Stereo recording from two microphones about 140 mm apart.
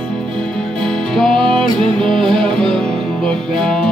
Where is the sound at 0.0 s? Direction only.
5° left (ahead or behind).